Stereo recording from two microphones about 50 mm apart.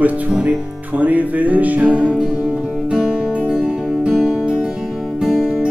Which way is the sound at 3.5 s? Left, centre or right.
Centre.